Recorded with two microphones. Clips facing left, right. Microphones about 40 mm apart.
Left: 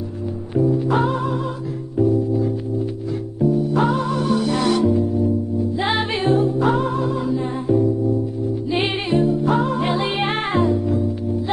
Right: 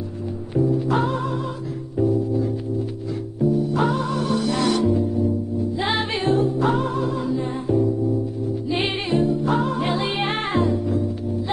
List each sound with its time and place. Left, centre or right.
0.6 s music: centre
4.5 s music: left
4.8 s music: centre
5.9 s music: centre